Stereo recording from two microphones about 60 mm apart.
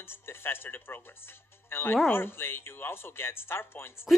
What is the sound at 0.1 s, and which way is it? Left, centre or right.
Speech, left.